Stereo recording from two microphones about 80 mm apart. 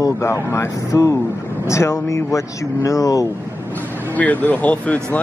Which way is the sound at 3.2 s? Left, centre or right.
Left.